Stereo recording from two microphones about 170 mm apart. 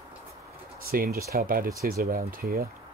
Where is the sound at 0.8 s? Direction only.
60° right (ahead or behind).